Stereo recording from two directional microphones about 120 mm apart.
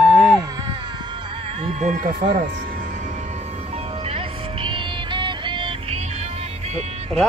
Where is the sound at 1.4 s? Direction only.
55° right (ahead or behind).